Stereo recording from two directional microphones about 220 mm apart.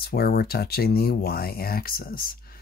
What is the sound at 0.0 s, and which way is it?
Speech, 45° left (ahead or behind).